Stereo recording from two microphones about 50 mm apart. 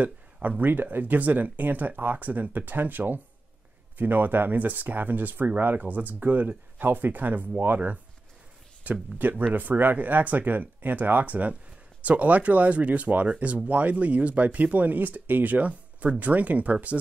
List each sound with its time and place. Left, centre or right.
0.0 s speech: right